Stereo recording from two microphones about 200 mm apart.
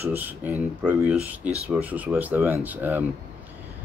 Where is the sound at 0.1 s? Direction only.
10° right (ahead or behind).